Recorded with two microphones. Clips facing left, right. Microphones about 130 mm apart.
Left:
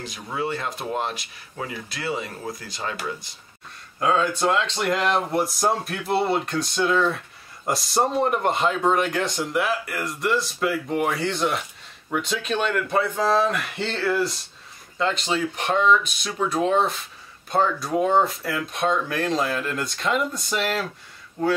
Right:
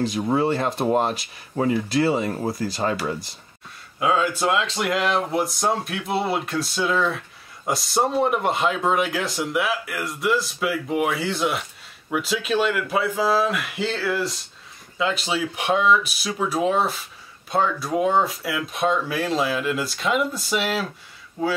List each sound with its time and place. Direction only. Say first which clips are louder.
0.0 s speech: right 8 dB; 35° right (ahead or behind)
4.0 s speech: even; 5° right (ahead or behind)